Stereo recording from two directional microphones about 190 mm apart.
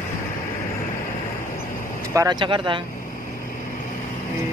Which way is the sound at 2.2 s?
20° right (ahead or behind).